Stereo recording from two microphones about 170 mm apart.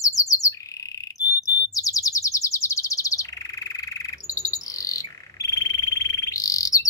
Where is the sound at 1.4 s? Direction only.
20° left (ahead or behind).